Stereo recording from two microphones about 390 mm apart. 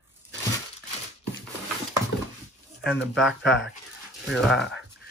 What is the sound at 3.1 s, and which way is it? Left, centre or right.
Speech, centre.